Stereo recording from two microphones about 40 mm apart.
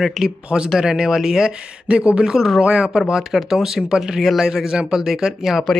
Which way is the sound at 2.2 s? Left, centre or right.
Centre.